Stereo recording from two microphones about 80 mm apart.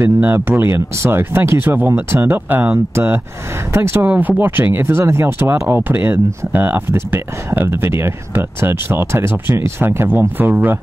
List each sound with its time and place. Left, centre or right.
0.0 s speech: right